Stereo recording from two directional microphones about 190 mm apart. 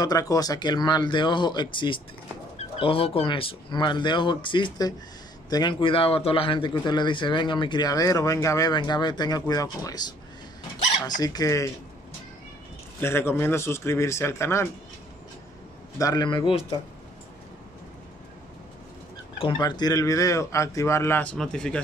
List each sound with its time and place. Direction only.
0.0 s a man's voice: 20° left (ahead or behind)
11.1 s a man's voice: 20° left (ahead or behind)
13.0 s a man's voice: 10° left (ahead or behind)
16.0 s a man's voice: 20° left (ahead or behind)
19.4 s a man's voice: 20° left (ahead or behind); by 21.8 s 5° left (ahead or behind)